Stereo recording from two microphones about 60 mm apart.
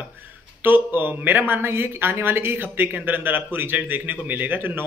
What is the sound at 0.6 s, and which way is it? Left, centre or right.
Speech, right.